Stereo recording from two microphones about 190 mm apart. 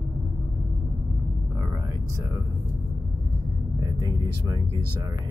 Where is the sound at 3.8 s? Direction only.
20° right (ahead or behind).